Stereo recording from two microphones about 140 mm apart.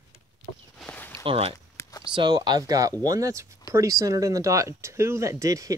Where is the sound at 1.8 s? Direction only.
25° left (ahead or behind).